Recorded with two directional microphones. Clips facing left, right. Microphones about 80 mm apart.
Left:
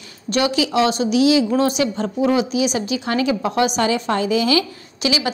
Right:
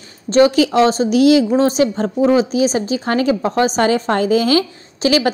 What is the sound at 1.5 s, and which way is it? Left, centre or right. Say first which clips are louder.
A woman's voice: right 4 dB; right.